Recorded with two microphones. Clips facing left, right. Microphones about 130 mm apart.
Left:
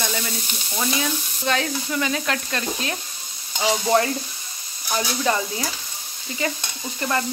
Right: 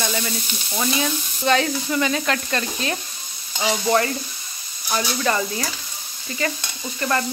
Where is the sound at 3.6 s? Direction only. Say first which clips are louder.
Even; 20° left (ahead or behind).